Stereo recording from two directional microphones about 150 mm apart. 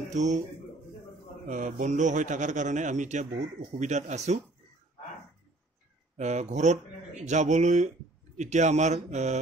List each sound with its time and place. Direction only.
0.1 s speech: 55° right (ahead or behind)
1.5 s a man's voice: 60° right (ahead or behind)
6.1 s speech: 50° right (ahead or behind)